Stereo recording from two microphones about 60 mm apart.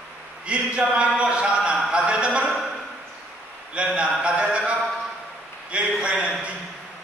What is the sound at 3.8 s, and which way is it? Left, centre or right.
Speech, centre.